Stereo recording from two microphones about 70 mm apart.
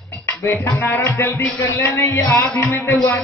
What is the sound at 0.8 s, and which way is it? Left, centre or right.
Speech, left.